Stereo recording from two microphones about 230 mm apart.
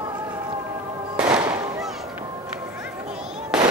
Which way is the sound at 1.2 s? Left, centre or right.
Centre.